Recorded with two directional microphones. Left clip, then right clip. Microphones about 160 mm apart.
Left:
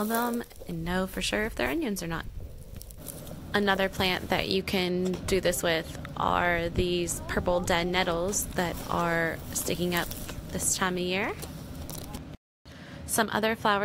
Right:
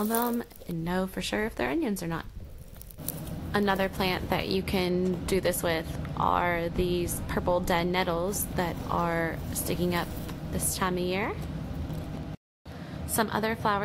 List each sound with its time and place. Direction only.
0.0 s speech: 20° left (ahead or behind)
3.5 s speech: 20° left (ahead or behind)
13.1 s speech: 25° left (ahead or behind)